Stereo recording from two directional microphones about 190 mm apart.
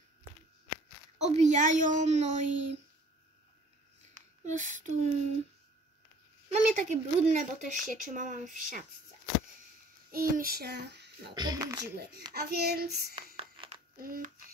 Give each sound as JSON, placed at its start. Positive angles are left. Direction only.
{"t": 1.1, "sound": "a woman's voice", "side_deg": -35}
{"t": 4.5, "sound": "a woman's voice", "side_deg": -40}
{"t": 6.5, "sound": "speech", "side_deg": -35}
{"t": 10.1, "sound": "speech", "side_deg": -50}
{"t": 11.3, "sound": "speech", "side_deg": -20}
{"t": 12.4, "sound": "child singing", "side_deg": -55}
{"t": 13.4, "sound": "crumpling", "side_deg": -30}
{"t": 13.9, "sound": "speech", "side_deg": -50}